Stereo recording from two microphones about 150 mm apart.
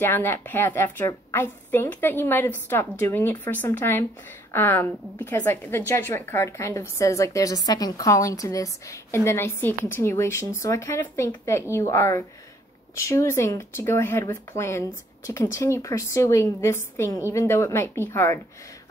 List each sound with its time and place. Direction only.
0.0 s a woman's voice: 15° left (ahead or behind)